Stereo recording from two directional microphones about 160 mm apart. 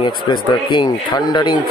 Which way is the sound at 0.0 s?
30° left (ahead or behind).